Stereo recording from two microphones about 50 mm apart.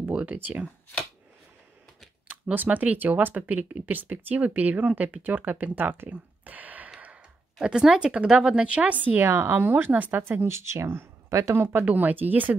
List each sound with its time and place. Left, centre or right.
0.1 s a sound: right
2.5 s speech: right
7.8 s speech: centre; by 10.4 s right
10.4 s speech: right
11.2 s speech: right
11.5 s speech: right
11.8 s speech: right